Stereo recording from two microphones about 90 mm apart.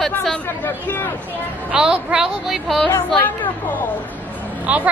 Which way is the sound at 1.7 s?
10° right (ahead or behind).